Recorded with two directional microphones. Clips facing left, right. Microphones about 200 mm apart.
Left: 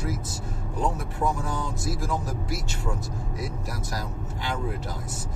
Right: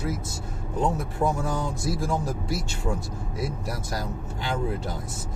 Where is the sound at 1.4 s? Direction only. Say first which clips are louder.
Right 3 dB; 25° right (ahead or behind).